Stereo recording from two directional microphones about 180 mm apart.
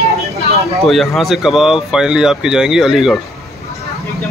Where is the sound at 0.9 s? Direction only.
Centre (ahead or behind).